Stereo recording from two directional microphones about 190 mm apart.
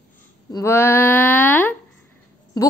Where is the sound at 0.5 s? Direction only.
15° left (ahead or behind).